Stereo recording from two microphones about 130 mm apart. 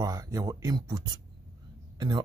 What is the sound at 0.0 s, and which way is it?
A man's voice, 25° right (ahead or behind).